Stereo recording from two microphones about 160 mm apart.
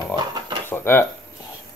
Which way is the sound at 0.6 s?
15° left (ahead or behind).